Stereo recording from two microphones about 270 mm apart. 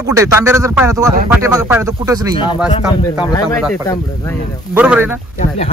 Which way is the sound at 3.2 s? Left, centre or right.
Centre.